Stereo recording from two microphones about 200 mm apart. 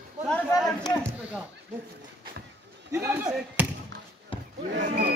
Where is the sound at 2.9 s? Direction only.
10° right (ahead or behind).